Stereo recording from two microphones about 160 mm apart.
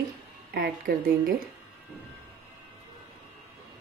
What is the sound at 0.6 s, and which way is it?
Speech, 65° right (ahead or behind).